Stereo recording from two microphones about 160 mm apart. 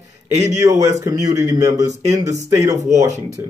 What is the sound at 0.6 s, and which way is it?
A man's voice, 20° right (ahead or behind).